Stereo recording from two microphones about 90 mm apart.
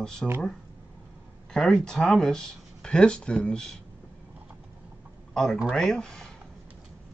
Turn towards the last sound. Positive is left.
turn(degrees=5)  # may be behind; listen again after turning